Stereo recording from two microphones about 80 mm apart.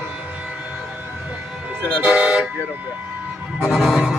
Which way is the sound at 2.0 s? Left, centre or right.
Centre.